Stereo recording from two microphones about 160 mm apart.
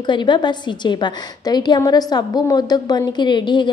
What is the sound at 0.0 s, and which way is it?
A woman's voice, 30° left (ahead or behind).